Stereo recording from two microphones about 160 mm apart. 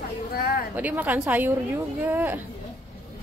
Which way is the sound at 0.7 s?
10° right (ahead or behind).